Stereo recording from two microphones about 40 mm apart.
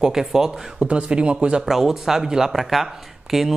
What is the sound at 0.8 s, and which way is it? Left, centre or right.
Speech, right.